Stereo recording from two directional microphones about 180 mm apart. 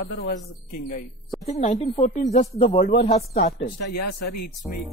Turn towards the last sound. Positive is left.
turn(degrees=35)  # may be behind; listen again after turning